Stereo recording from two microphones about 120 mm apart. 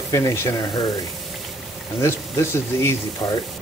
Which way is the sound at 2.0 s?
20° left (ahead or behind).